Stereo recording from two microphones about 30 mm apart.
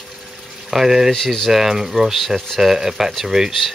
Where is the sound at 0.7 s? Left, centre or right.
Centre.